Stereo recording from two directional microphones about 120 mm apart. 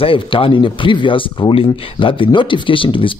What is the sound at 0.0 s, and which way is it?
Speech, 50° left (ahead or behind).